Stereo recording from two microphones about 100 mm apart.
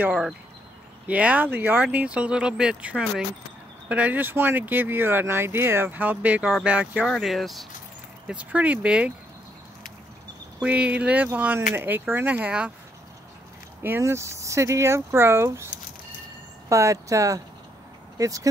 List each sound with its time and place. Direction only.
0.0 s speech: 10° right (ahead or behind)
7.1 s speech: centre (ahead or behind)
8.3 s speech: 15° right (ahead or behind)
10.6 s speech: 15° right (ahead or behind)
13.8 s speech: 25° right (ahead or behind)